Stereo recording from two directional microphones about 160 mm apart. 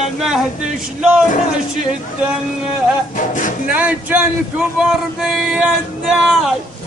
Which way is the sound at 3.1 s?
55° left (ahead or behind).